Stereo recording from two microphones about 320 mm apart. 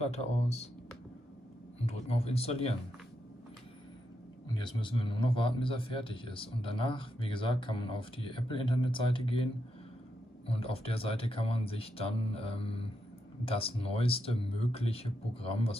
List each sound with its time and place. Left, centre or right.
0.0 s speech: centre
1.9 s speech: centre
4.6 s a man's voice: centre
10.4 s a man's voice: centre